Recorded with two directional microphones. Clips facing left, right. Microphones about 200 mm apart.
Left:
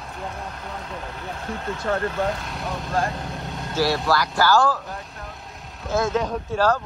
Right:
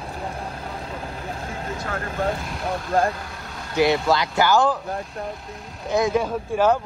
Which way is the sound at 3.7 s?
20° right (ahead or behind).